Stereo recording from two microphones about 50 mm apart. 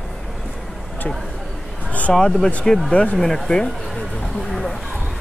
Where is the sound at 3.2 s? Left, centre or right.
Centre.